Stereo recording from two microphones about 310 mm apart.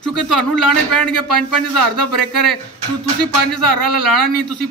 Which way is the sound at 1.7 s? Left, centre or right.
Right.